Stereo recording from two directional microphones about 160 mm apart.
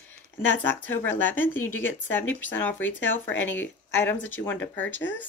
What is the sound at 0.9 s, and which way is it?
Speech, 10° left (ahead or behind).